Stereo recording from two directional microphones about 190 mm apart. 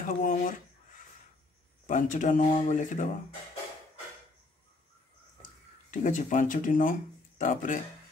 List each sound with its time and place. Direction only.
0.2 s speech: 45° left (ahead or behind)
1.9 s speech: 40° left (ahead or behind)
5.9 s speech: 40° left (ahead or behind)